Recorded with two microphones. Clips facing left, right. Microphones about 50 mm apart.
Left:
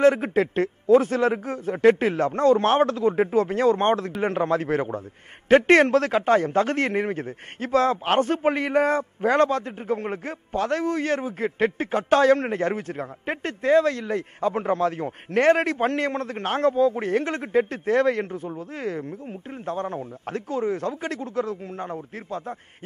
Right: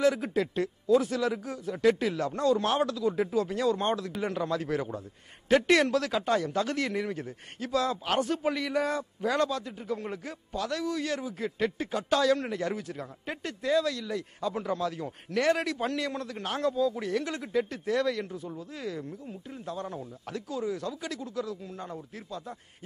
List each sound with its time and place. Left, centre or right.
0.0 s a man's voice: left